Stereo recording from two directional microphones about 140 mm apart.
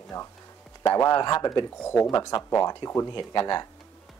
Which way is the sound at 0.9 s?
25° left (ahead or behind).